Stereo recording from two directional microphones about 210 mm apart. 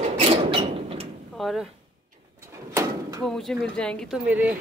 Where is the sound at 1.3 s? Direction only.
Centre (ahead or behind).